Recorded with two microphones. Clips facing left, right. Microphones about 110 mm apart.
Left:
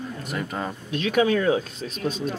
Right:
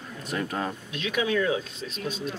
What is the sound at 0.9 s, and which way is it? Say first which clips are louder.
Speech: left 7 dB; 45° left (ahead or behind).